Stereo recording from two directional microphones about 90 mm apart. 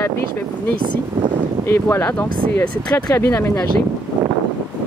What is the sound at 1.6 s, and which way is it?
Speech, 25° left (ahead or behind).